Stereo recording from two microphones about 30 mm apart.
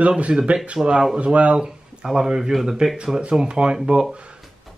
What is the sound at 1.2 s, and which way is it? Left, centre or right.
Speech, right.